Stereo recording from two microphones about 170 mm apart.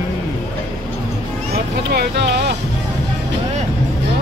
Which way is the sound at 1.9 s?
80° right.